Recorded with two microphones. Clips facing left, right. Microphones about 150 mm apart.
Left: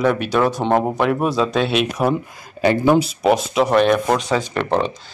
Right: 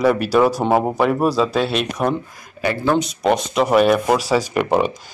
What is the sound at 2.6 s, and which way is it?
Speech, 25° left (ahead or behind).